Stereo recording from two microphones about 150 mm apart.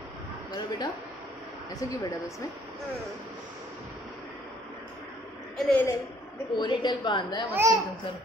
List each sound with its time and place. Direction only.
0.5 s a man's voice: 25° left (ahead or behind)
5.7 s a woman's voice: 10° left (ahead or behind)
6.6 s a woman's voice: 30° left (ahead or behind)
7.5 s speech: 20° right (ahead or behind)